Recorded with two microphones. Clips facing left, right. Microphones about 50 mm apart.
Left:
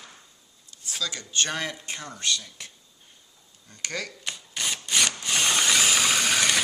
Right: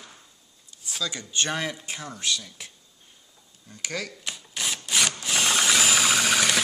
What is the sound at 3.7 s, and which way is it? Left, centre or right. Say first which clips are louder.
Wood: right 1 dB; centre.